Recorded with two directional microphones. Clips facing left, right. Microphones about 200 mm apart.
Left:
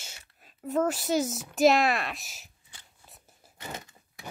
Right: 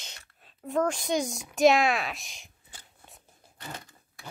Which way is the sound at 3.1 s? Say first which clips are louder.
Right 1 dB; centre (ahead or behind).